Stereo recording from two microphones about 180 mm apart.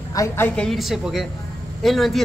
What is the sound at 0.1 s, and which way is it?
Speech, 20° left (ahead or behind).